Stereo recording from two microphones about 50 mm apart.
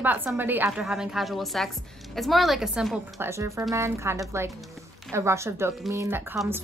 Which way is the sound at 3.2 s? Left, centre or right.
Right.